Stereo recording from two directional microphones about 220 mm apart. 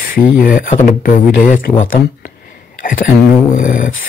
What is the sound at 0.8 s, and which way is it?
Speech, 40° left (ahead or behind).